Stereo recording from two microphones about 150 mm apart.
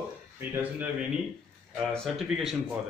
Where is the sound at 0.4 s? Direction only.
10° right (ahead or behind).